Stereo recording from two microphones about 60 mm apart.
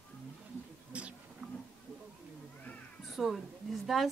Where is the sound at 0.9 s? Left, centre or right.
Centre.